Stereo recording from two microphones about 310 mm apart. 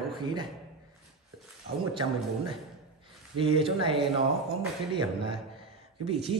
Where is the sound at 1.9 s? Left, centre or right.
Centre.